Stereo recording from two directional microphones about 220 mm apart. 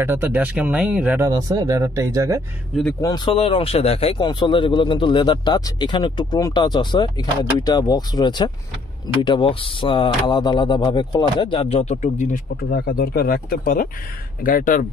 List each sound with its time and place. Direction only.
0.0 s speech: 10° right (ahead or behind)
2.7 s speech: 5° left (ahead or behind)
3.0 s speech: 20° left (ahead or behind); by 14.9 s 40° left (ahead or behind)